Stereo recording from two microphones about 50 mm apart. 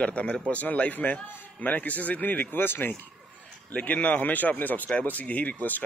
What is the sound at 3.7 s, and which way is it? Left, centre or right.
A man's voice, left.